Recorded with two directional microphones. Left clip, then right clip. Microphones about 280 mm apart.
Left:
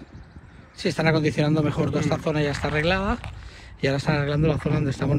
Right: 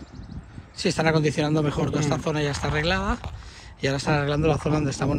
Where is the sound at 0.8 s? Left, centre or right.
Centre.